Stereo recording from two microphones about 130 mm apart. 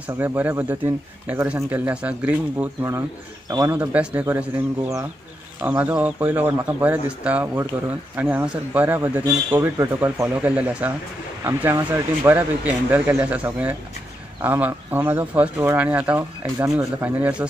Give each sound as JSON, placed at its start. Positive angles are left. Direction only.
{"t": 0.0, "sound": "speech", "side_deg": -15}
{"t": 3.4, "sound": "speech", "side_deg": -30}
{"t": 3.9, "sound": "speech", "side_deg": -10}
{"t": 5.7, "sound": "speech", "side_deg": -10}